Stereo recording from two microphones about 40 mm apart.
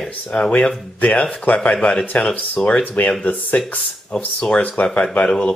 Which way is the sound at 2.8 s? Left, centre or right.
Left.